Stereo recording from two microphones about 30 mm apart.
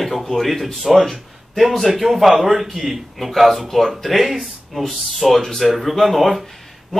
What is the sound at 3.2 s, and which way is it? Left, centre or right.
Speech, centre.